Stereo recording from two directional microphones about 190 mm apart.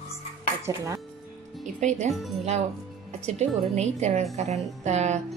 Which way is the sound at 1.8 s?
40° right (ahead or behind).